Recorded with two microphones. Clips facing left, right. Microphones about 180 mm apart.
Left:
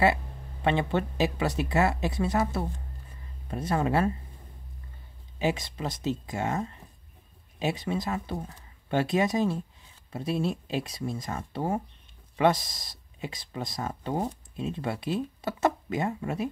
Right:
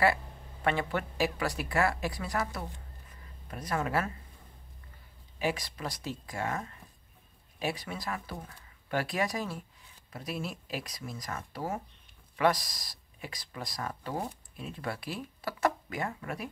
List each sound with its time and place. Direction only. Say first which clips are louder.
0.7 s speech: left 4 dB; 25° left (ahead or behind)
3.1 s a sound: left 8 dB; 25° left (ahead or behind)
5.4 s speech: left 4 dB; 25° left (ahead or behind)